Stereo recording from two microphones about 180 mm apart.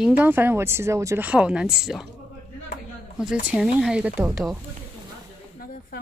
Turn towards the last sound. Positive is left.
turn(degrees=-10)  # may be behind; listen again after turning